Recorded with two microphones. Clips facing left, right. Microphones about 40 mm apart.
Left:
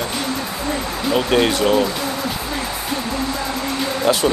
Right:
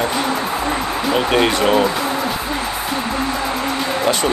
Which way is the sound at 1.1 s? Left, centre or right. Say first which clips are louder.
Even; centre.